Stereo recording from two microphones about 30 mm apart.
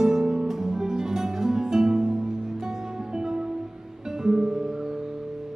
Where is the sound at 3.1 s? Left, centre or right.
Right.